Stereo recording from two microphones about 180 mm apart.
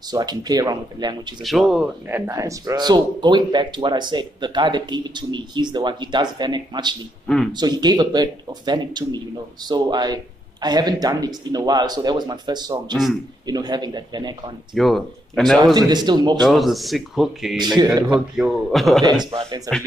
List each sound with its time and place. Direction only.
0.1 s speech: 20° right (ahead or behind)
1.4 s speech: centre (ahead or behind)
2.0 s speech: 15° right (ahead or behind)
14.7 s speech: centre (ahead or behind)
15.9 s speech: 25° right (ahead or behind)
16.3 s speech: centre (ahead or behind)
17.7 s speech: 20° right (ahead or behind)
18.3 s speech: centre (ahead or behind)
19.0 s speech: 25° right (ahead or behind)